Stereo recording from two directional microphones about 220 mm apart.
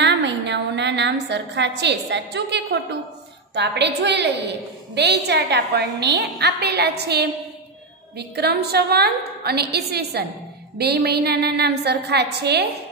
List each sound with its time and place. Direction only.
0.0 s a woman's voice: 50° right (ahead or behind)